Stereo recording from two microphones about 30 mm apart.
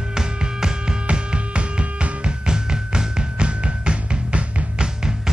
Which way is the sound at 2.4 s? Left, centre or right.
Right.